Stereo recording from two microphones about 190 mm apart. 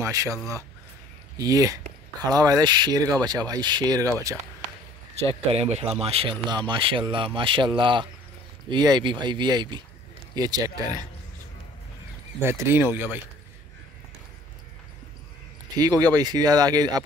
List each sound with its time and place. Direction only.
0.0 s speech: 15° right (ahead or behind)
5.5 s speech: 35° right (ahead or behind)
12.4 s speech: 15° right (ahead or behind)
15.8 s speech: 20° right (ahead or behind)